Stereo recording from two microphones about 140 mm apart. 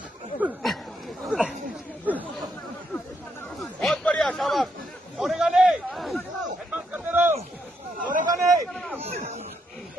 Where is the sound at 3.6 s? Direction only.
Centre (ahead or behind).